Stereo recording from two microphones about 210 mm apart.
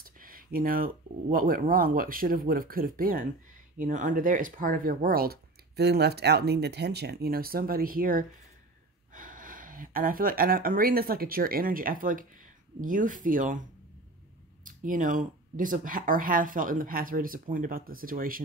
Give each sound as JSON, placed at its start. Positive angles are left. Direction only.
{"t": 0.0, "sound": "speech", "side_deg": -40}